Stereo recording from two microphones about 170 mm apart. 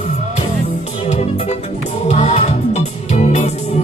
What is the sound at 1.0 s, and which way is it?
Music, 40° left (ahead or behind).